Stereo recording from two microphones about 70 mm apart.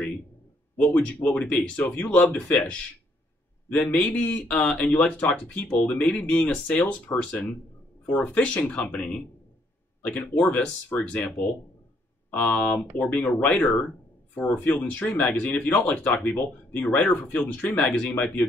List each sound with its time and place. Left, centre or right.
0.7 s speech: left